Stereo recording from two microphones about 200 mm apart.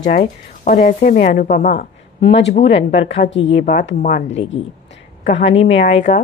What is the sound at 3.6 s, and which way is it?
Speech, 40° left (ahead or behind).